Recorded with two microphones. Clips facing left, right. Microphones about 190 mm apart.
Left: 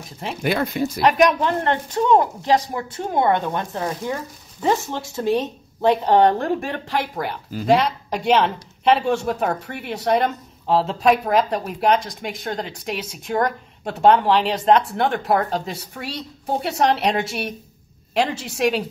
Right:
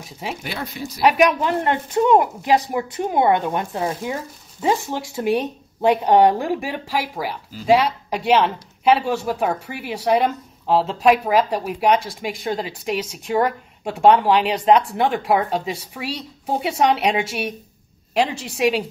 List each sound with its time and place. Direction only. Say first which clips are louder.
0.4 s speech: left 8 dB; 55° left (ahead or behind)
1.0 s speech: right 1 dB; 10° right (ahead or behind)